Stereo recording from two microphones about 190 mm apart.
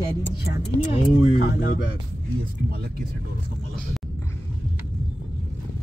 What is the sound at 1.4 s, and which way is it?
Speech, 50° left (ahead or behind).